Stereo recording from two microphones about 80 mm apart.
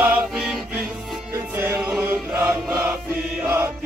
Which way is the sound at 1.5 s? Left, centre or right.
Right.